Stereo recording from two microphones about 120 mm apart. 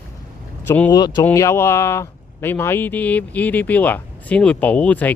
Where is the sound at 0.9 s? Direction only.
35° left (ahead or behind).